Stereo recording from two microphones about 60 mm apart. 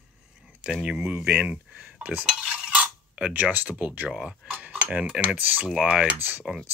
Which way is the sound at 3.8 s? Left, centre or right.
Right.